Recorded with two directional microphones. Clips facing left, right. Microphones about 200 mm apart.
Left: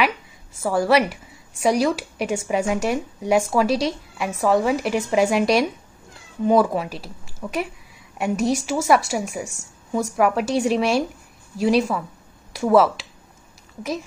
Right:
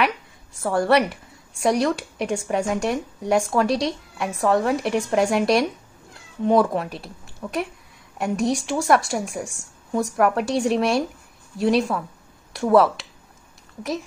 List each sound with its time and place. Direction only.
0.6 s a woman's voice: centre (ahead or behind)